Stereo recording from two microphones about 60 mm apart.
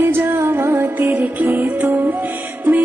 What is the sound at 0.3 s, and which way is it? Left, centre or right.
Music, right.